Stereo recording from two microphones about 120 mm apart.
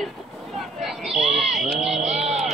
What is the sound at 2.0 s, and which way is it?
Vehicle, 65° right (ahead or behind).